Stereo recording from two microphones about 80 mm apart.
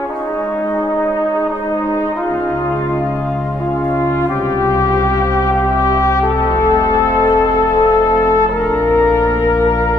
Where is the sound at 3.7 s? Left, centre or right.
Left.